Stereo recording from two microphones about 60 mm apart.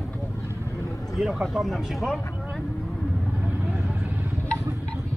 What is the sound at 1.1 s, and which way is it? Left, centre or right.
Speech, centre.